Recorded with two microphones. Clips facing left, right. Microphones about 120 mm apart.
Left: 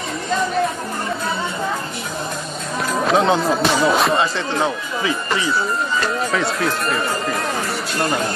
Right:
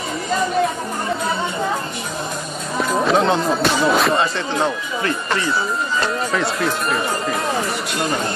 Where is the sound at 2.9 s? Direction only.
Centre (ahead or behind).